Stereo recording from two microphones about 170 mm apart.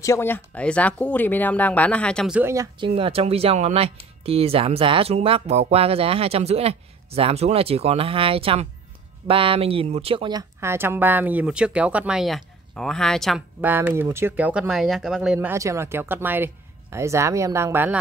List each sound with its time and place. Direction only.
0.0 s speech: 15° left (ahead or behind)
2.3 s speech: 15° right (ahead or behind)
2.8 s speech: 35° right (ahead or behind)
10.6 s speech: 15° right (ahead or behind); by 13.4 s centre (ahead or behind)
13.6 s speech: 10° right (ahead or behind)